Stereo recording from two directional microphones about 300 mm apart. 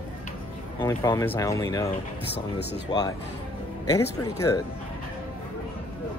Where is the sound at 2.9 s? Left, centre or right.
Centre.